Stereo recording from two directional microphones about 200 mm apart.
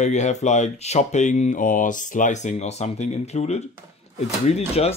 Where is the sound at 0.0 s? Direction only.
35° left (ahead or behind).